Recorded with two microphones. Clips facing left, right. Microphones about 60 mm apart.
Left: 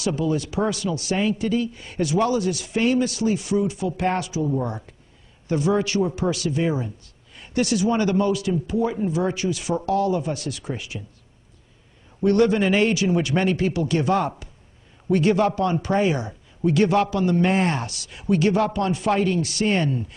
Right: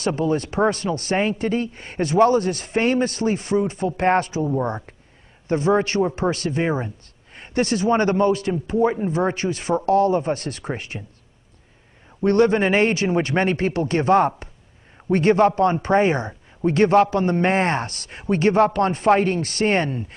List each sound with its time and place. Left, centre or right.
0.0 s speech: right
12.2 s speech: right